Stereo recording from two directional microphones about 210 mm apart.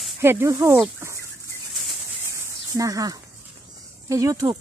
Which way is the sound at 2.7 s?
15° right (ahead or behind).